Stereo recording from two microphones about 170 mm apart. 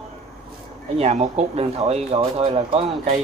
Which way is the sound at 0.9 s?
40° right (ahead or behind).